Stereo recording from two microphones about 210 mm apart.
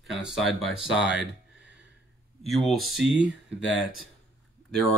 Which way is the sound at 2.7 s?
Centre (ahead or behind).